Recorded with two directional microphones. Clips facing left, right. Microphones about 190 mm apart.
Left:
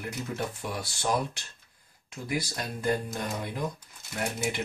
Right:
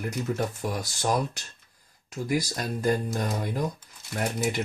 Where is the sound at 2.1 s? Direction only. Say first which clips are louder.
Right 5 dB; 40° right (ahead or behind).